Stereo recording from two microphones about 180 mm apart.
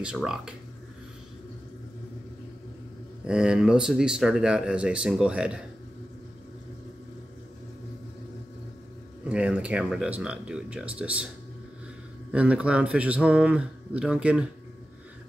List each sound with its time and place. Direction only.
0.0 s speech: 5° right (ahead or behind)
3.3 s speech: 5° right (ahead or behind)
9.3 s speech: 5° right (ahead or behind)
12.3 s speech: 5° right (ahead or behind)